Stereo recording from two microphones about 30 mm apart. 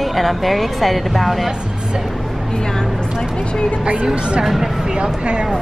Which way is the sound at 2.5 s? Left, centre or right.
Left.